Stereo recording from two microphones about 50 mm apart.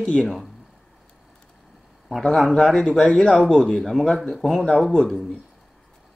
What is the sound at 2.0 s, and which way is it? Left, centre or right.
A man's voice, centre.